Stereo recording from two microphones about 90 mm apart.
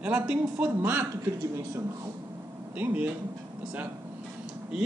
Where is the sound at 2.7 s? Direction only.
15° right (ahead or behind).